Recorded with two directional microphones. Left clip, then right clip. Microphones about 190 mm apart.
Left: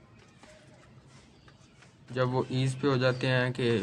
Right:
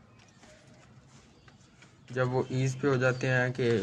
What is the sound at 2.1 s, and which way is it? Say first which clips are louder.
Speech: even; 5° left (ahead or behind).